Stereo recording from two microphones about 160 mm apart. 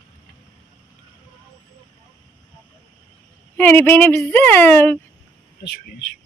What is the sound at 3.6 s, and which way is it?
A woman's voice, 10° left (ahead or behind).